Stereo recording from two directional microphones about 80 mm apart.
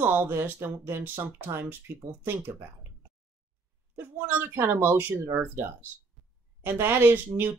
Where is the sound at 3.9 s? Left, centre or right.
Right.